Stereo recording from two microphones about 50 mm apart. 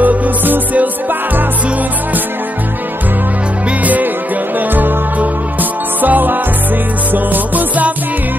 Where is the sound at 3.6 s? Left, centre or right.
Right.